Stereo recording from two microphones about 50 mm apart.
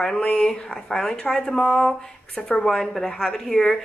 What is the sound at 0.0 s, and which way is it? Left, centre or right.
Speech, centre.